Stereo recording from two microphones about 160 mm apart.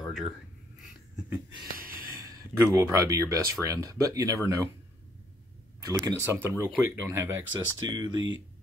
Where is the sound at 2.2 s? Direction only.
20° right (ahead or behind).